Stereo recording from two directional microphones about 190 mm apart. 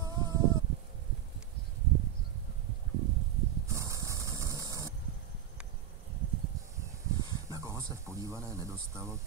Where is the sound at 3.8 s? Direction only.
15° right (ahead or behind).